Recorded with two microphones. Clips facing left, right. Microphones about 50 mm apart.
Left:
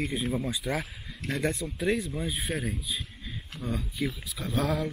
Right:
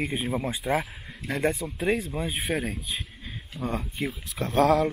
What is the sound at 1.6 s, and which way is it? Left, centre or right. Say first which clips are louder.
Speech: right 2 dB; right.